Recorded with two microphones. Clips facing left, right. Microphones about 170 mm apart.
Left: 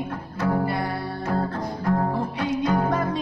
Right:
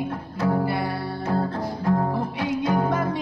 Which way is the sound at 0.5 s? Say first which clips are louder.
Even; 5° right (ahead or behind).